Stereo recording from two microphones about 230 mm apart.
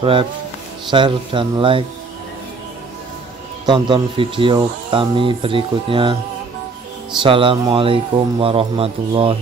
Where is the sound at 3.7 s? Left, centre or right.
Right.